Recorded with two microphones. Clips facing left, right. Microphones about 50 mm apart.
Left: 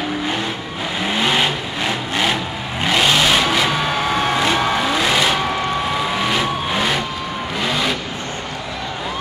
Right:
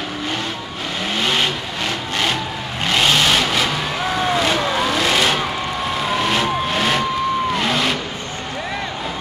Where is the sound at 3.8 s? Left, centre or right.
Left.